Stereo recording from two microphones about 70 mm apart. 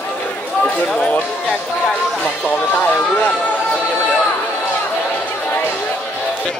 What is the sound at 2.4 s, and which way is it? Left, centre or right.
Music, left.